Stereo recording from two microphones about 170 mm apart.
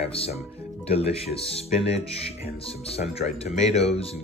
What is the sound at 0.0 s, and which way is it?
Speech, 35° left (ahead or behind).